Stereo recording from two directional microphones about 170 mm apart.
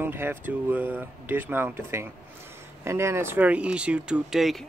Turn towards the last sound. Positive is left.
turn(degrees=0)  # may be behind; listen again after turning